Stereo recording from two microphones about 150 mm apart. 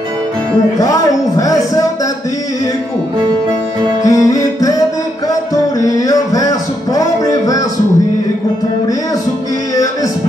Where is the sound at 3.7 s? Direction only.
30° right (ahead or behind).